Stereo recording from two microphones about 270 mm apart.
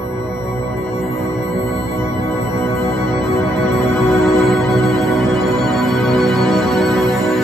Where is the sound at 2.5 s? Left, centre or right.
Centre.